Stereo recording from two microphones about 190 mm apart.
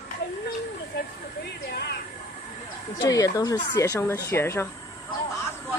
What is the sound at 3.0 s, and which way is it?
Speech, 20° left (ahead or behind).